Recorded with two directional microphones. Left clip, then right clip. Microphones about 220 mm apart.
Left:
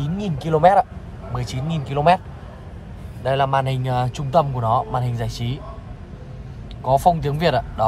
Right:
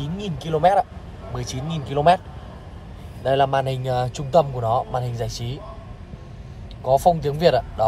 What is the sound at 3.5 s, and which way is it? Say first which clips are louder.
A man's voice: left 1 dB; centre (ahead or behind).